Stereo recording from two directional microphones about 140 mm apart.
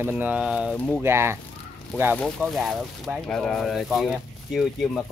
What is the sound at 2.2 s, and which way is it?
Speech, 5° left (ahead or behind).